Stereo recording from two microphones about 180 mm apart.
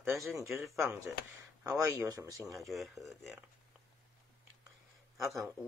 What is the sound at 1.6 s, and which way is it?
Speech, 20° right (ahead or behind).